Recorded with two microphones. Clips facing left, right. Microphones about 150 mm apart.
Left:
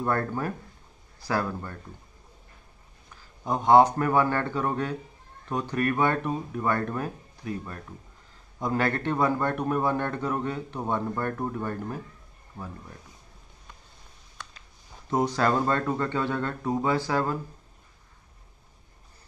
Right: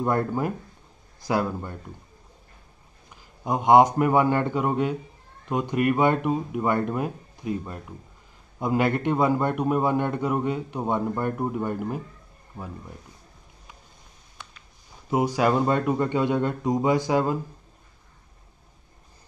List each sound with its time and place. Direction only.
0.0 s a man's voice: 15° right (ahead or behind)
3.2 s a man's voice: 15° right (ahead or behind)
15.0 s a man's voice: 10° right (ahead or behind)